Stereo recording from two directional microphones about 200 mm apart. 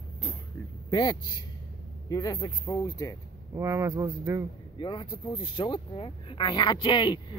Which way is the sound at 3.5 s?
15° right (ahead or behind).